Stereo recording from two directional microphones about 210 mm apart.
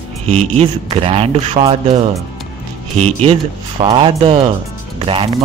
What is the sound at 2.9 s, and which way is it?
Speech, 30° right (ahead or behind).